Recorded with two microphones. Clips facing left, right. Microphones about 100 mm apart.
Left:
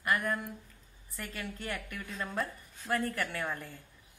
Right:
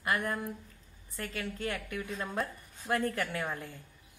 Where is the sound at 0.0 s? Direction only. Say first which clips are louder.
Even; 25° right (ahead or behind).